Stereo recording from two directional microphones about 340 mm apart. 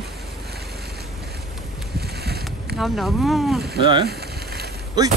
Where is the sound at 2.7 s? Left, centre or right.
Centre.